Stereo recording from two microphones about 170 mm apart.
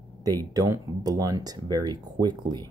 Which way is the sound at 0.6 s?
20° right (ahead or behind).